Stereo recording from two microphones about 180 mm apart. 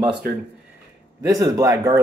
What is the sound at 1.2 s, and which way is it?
Speech, 20° right (ahead or behind).